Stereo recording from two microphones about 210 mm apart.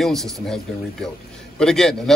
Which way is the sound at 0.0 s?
Centre (ahead or behind).